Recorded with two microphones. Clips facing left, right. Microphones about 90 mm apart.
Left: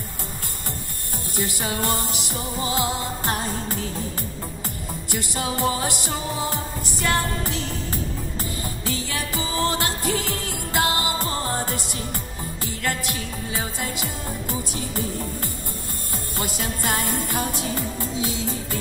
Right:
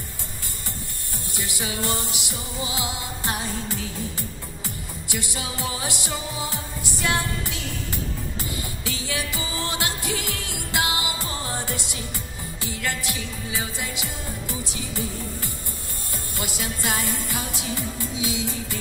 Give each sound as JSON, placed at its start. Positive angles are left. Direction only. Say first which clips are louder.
{"t": 1.3, "sound": "music", "louder": "left 4 dB", "side_deg": 40}